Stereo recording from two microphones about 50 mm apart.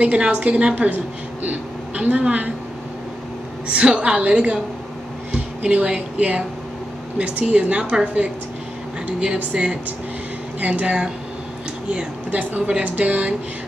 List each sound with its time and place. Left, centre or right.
0.0 s a woman's voice: right
3.6 s a woman's voice: right
9.0 s a woman's voice: right
12.3 s a woman's voice: right